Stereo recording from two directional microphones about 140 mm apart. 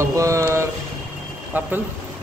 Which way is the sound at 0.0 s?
20° right (ahead or behind).